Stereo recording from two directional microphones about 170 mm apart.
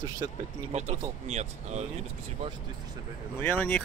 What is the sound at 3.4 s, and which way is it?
Speech, 10° left (ahead or behind).